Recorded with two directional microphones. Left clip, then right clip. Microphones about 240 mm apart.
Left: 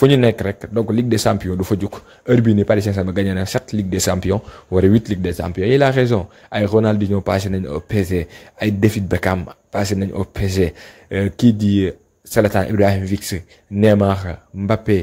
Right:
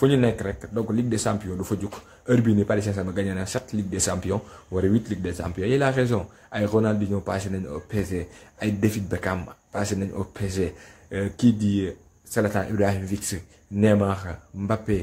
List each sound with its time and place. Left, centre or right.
0.0 s speech: left